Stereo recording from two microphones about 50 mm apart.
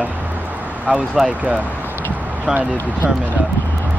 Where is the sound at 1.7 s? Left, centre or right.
Right.